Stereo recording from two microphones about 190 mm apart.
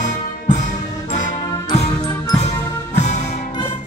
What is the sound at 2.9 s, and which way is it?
Music, 40° left (ahead or behind).